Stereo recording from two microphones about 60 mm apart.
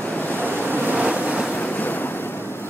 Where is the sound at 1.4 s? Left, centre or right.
Left.